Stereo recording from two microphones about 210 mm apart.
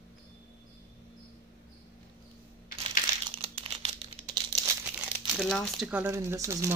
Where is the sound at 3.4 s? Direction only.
30° right (ahead or behind).